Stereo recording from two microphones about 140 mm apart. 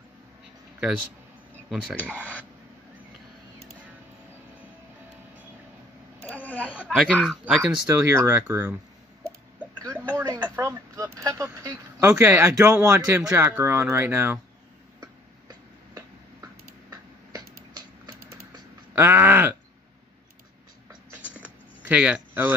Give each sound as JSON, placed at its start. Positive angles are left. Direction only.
{"t": 2.1, "sound": "speech", "side_deg": 10}
{"t": 6.3, "sound": "a sound", "side_deg": 10}
{"t": 6.7, "sound": "speech", "side_deg": -5}
{"t": 7.9, "sound": "speech", "side_deg": -20}
{"t": 9.9, "sound": "a sound", "side_deg": -15}
{"t": 10.4, "sound": "speech", "side_deg": -15}
{"t": 15.0, "sound": "tick-tock", "side_deg": -25}
{"t": 16.9, "sound": "a sound", "side_deg": -30}
{"t": 18.9, "sound": "speech", "side_deg": -15}
{"t": 21.8, "sound": "speech", "side_deg": -10}